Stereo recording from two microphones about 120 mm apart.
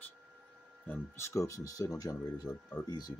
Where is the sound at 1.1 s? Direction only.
25° left (ahead or behind).